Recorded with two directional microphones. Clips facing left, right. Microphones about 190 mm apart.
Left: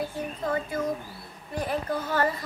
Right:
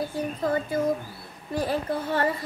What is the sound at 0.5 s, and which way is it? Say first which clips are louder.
Speech: right 3 dB; 30° right (ahead or behind).